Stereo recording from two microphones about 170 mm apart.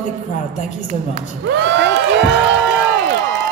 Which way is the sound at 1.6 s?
90° right.